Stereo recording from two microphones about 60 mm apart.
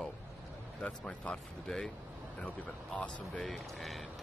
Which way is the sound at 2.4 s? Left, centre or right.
Left.